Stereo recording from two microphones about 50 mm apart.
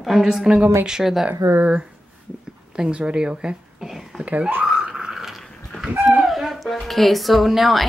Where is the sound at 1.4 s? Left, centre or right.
Right.